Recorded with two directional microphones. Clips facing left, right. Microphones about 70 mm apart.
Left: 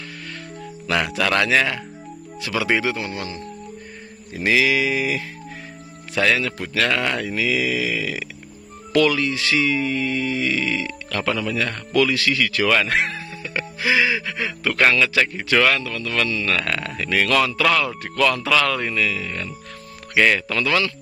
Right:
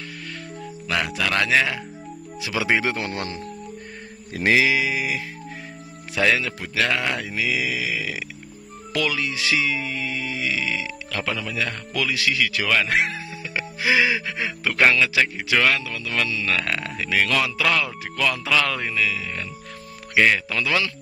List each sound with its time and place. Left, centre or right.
0.8 s speech: centre
2.4 s speech: centre
2.8 s speech: right
4.6 s speech: centre
12.7 s music: centre
14.2 s speech: right
14.8 s speech: centre